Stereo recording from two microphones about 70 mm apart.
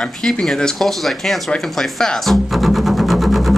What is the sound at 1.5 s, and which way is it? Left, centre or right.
Speech, centre.